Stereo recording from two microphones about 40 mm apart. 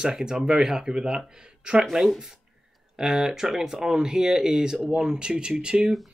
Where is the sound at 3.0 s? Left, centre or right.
Centre.